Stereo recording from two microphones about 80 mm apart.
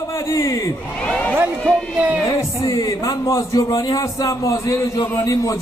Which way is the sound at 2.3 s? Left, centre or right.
Left.